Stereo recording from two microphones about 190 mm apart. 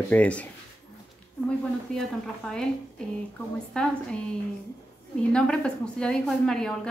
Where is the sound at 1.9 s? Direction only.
5° left (ahead or behind).